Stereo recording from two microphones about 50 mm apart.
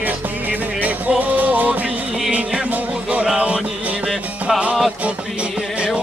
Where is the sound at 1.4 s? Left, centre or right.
Right.